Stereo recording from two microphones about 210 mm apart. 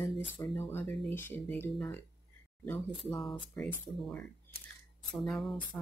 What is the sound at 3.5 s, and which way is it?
Speech, 10° left (ahead or behind).